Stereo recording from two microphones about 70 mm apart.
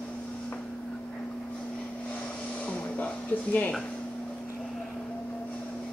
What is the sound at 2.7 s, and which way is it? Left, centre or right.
Music, centre.